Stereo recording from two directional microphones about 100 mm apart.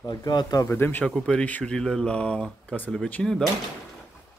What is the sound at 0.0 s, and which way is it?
Speech, 45° left (ahead or behind).